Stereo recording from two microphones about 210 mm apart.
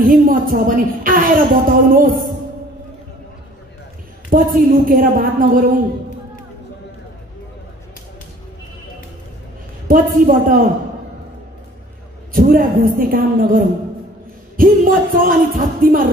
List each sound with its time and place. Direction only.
0.0 s a woman's voice: 45° right (ahead or behind)
4.3 s a woman's voice: 40° right (ahead or behind)
9.8 s a woman's voice: 40° right (ahead or behind)
12.3 s a woman's voice: 40° right (ahead or behind)